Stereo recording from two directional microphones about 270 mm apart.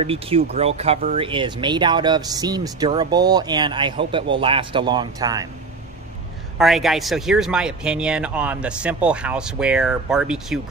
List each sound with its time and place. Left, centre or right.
0.0 s speech: right
6.6 s speech: centre